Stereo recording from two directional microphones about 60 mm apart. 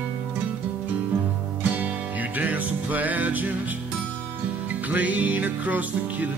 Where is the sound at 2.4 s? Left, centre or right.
Right.